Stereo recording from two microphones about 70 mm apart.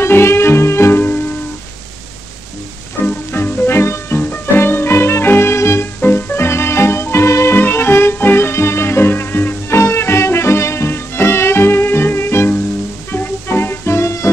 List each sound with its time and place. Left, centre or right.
0.0 s music: left
3.3 s music: left
5.9 s music: left